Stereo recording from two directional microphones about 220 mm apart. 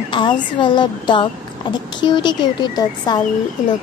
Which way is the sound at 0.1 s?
20° left (ahead or behind).